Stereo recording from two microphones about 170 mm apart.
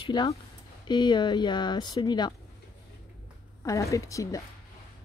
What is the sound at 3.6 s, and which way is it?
Speech, 20° left (ahead or behind).